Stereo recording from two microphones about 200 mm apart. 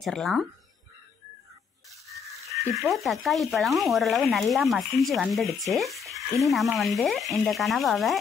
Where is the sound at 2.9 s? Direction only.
Centre (ahead or behind).